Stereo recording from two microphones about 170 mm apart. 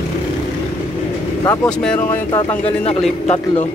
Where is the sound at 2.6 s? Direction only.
35° left (ahead or behind).